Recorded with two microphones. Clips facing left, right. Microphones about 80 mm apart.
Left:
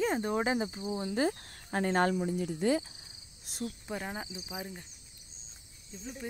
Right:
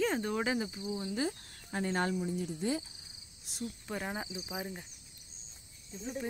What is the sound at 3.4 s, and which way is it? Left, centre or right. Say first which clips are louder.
Cricket: left 2 dB; left.